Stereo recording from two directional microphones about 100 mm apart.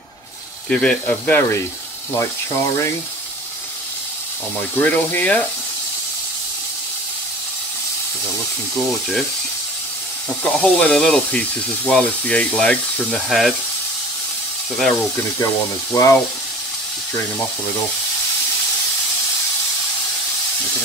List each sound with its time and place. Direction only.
0.7 s speech: 10° left (ahead or behind)
2.1 s speech: 30° left (ahead or behind)
4.7 s speech: 20° left (ahead or behind)
10.4 s speech: 15° left (ahead or behind)
15.9 s speech: 30° left (ahead or behind)